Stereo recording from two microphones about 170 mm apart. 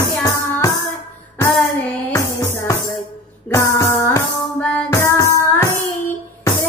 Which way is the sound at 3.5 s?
15° left (ahead or behind).